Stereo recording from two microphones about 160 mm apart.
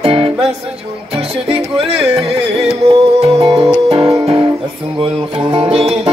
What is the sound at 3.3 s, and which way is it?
Music, 25° right (ahead or behind).